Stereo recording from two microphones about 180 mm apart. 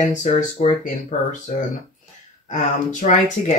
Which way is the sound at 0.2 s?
40° left (ahead or behind).